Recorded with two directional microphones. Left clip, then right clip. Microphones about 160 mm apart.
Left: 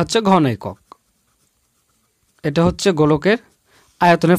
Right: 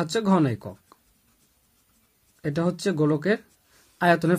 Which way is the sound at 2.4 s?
60° left (ahead or behind).